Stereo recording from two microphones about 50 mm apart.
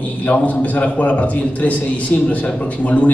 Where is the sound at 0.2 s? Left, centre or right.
Left.